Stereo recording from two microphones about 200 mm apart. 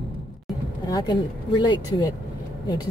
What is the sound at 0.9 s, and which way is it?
Speech, 20° left (ahead or behind).